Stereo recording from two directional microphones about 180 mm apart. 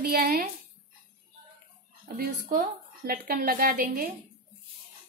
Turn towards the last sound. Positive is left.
turn(degrees=-50)  # may be behind; listen again after turning